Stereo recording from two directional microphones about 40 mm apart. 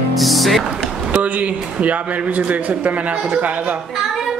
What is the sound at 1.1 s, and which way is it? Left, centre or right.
A man's voice, right.